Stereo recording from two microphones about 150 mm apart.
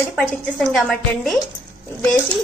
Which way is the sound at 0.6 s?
5° left (ahead or behind).